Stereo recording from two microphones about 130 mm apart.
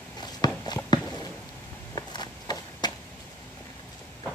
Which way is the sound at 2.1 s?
35° left (ahead or behind).